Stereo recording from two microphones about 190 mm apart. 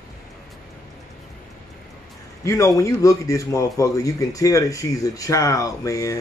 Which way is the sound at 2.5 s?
15° left (ahead or behind).